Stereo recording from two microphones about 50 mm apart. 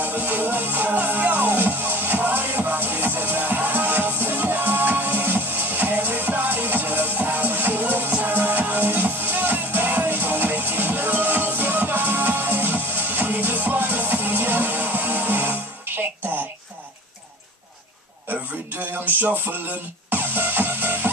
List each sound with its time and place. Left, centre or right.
0.0 s music: right
19.0 s music: right